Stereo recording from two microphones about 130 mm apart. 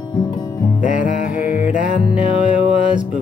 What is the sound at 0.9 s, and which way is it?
Music, 10° right (ahead or behind).